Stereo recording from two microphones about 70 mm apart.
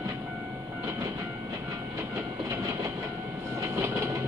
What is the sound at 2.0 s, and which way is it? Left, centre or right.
Train, right.